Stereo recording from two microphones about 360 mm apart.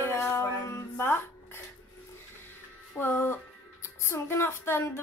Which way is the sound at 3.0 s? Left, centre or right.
Centre.